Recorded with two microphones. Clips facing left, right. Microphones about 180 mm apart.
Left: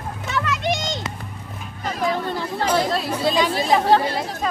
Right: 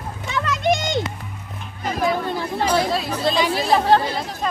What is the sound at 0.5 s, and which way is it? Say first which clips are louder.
Children playing: right 7 dB; 50° right (ahead or behind).